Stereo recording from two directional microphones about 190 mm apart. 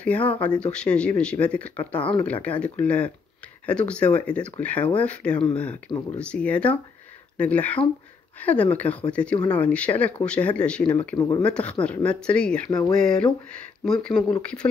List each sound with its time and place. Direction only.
0.0 s speech: 5° left (ahead or behind)
11.1 s speech: 20° left (ahead or behind)
11.4 s speech: 5° left (ahead or behind)